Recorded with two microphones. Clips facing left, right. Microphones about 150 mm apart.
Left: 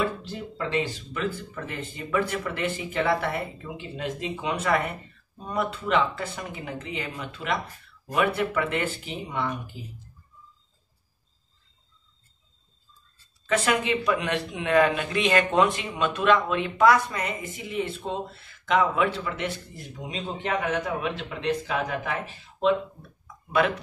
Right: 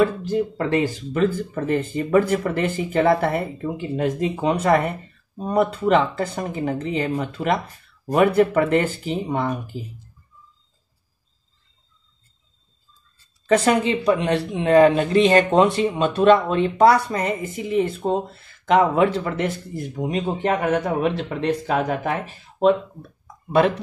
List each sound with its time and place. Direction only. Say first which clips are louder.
0.0 s speech: right 10 dB; 50° right (ahead or behind)
13.5 s speech: right 6 dB; 35° right (ahead or behind)